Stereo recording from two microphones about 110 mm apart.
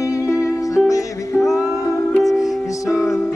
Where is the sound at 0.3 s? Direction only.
30° left (ahead or behind).